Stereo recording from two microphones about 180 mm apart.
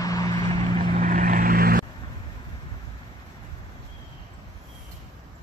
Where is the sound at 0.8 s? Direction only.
45° right (ahead or behind).